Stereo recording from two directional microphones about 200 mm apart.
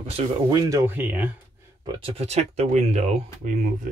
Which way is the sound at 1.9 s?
30° right (ahead or behind).